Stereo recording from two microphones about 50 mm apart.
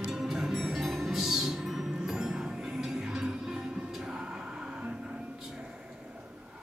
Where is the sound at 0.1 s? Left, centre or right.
Centre.